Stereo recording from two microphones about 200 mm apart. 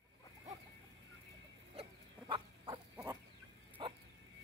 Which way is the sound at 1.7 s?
25° right (ahead or behind).